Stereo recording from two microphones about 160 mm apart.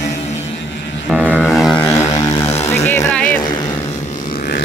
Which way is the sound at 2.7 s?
15° left (ahead or behind).